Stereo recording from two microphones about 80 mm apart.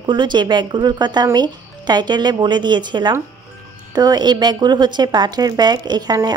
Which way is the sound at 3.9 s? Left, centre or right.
Right.